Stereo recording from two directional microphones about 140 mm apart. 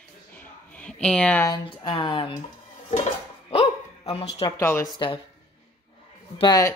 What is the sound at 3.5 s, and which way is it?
Bow-wow, 45° left (ahead or behind).